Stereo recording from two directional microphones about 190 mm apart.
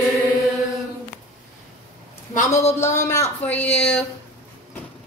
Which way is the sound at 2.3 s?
35° left (ahead or behind).